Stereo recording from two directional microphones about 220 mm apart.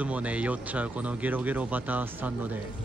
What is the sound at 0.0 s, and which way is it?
Speech, 5° right (ahead or behind).